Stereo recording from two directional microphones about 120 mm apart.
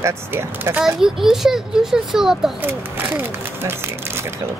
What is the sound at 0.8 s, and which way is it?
A child's voice, 5° right (ahead or behind).